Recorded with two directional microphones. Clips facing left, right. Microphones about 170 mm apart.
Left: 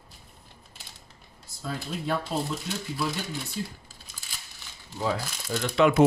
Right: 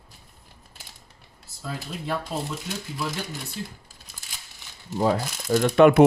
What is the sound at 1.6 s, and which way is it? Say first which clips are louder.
Speech: left 1 dB; centre (ahead or behind).